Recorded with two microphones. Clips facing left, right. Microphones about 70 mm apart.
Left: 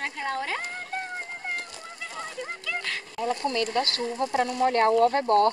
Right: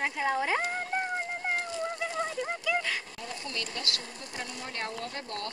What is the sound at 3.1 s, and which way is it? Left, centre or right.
Speech, left.